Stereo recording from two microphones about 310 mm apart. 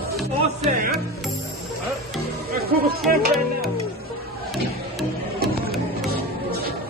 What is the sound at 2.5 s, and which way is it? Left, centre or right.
Music, right.